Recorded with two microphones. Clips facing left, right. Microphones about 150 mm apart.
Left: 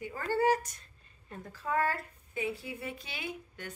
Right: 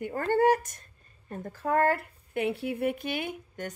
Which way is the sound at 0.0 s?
55° right (ahead or behind).